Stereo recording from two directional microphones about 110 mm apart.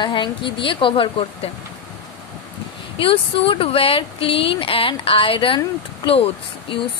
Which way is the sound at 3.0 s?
55° left (ahead or behind).